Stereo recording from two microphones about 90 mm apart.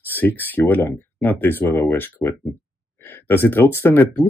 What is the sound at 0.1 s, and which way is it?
Speech, 20° left (ahead or behind).